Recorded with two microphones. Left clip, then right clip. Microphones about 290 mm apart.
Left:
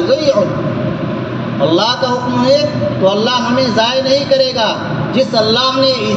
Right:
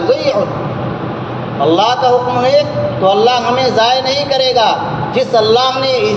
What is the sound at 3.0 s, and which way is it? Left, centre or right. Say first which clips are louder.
A man's voice: right 3 dB; right.